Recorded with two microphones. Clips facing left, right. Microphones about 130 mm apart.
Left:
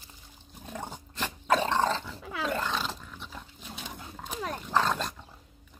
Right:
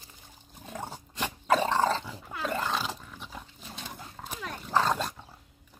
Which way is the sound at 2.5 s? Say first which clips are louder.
Right 1 dB; 5° right (ahead or behind).